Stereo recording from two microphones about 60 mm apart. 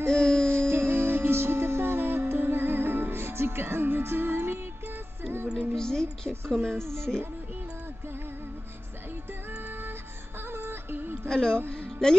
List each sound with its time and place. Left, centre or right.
0.1 s music: centre
0.5 s music: right
5.8 s a woman's voice: centre
6.8 s speech: right
9.5 s music: right
11.2 s a woman's voice: centre